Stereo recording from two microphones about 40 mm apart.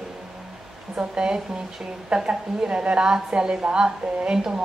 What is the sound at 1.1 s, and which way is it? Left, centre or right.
A woman's voice, right.